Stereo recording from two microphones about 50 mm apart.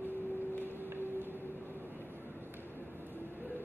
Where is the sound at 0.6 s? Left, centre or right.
Right.